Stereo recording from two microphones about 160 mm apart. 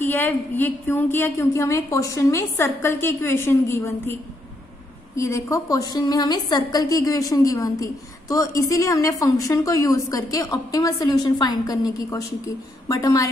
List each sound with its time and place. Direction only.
0.0 s a woman's voice: 10° left (ahead or behind)